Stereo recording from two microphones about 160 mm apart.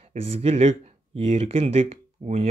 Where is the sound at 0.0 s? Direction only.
40° right (ahead or behind).